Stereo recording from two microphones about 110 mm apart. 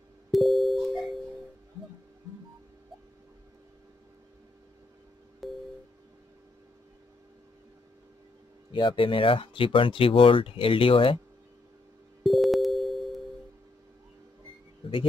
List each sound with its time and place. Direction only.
0.3 s music: centre (ahead or behind)
5.4 s music: centre (ahead or behind)
8.7 s speech: 50° left (ahead or behind)
12.2 s music: centre (ahead or behind)